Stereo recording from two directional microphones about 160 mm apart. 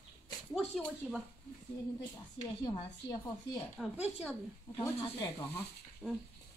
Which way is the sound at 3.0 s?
20° left (ahead or behind).